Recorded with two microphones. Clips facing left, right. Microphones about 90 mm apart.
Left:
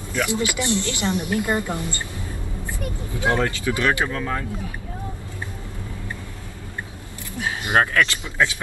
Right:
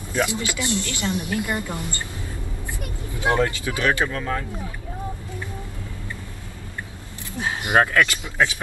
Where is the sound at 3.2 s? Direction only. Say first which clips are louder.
Even; 20° right (ahead or behind).